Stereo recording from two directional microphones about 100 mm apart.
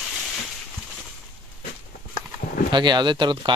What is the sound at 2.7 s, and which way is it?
Speech, 50° right (ahead or behind).